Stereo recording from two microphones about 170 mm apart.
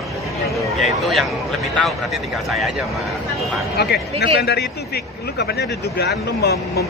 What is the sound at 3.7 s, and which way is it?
Speech, 70° left (ahead or behind).